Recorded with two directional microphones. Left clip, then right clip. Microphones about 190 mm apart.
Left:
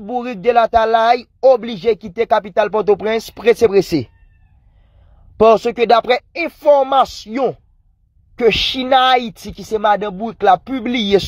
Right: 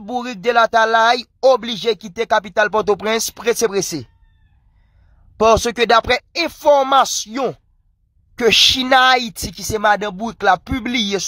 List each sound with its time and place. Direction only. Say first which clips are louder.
0.0 s speech: left 3 dB; 10° right (ahead or behind)
5.4 s speech: left 2 dB; 15° right (ahead or behind)